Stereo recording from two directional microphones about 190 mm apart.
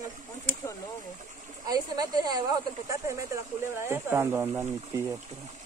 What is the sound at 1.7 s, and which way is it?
Speech, 20° right (ahead or behind).